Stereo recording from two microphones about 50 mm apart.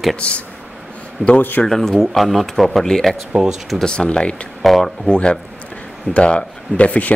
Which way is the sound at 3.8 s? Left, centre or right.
Centre.